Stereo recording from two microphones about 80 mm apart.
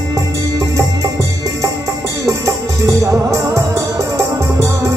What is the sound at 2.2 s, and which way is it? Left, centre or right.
Music, right.